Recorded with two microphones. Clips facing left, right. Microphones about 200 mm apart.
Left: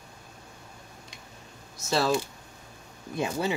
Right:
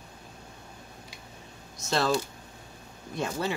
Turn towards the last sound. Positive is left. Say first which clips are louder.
# left 2 dB
turn(degrees=10)  # may be behind; listen again after turning